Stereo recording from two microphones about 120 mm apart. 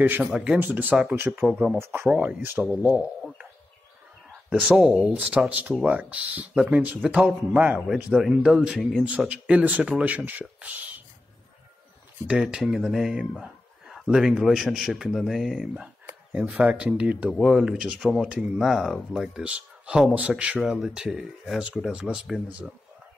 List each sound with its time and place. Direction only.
0.2 s speech: 5° right (ahead or behind)
4.3 s speech: 5° right (ahead or behind)
12.3 s speech: 5° right (ahead or behind)
15.7 s a sound: 10° right (ahead or behind)
16.4 s speech: 10° right (ahead or behind)